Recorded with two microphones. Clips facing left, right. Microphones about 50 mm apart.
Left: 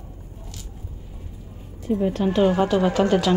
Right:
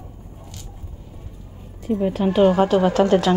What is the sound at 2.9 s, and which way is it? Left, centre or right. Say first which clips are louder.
Speech: right 3 dB; centre.